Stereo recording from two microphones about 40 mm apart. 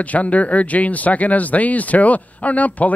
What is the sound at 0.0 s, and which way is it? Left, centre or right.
Speech, left.